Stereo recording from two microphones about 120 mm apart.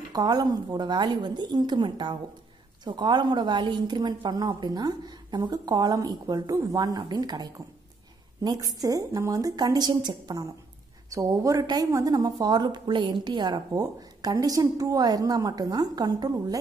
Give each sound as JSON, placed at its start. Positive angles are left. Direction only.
{"t": 0.1, "sound": "a woman's voice", "side_deg": -35}